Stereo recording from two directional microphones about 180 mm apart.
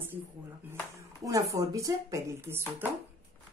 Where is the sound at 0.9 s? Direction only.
20° right (ahead or behind).